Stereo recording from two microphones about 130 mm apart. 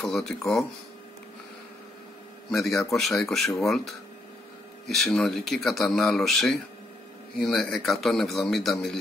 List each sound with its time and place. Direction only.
0.0 s speech: centre (ahead or behind)
2.5 s speech: centre (ahead or behind)